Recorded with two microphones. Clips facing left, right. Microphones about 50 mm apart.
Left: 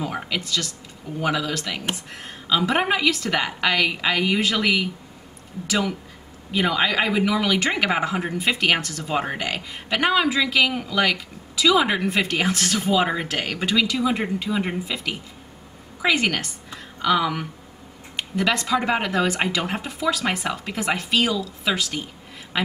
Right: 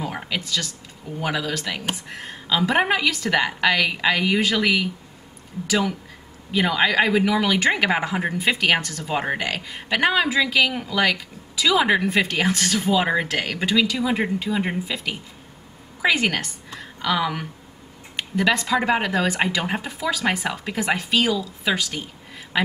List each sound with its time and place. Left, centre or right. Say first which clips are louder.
0.0 s a sound: left 1 dB; centre
1.1 s speech: left 1 dB; centre
9.5 s speech: right 1 dB; centre
12.4 s a woman's voice: right 1 dB; centre
18.5 s speech: right 1 dB; centre
18.9 s speech: right 1 dB; centre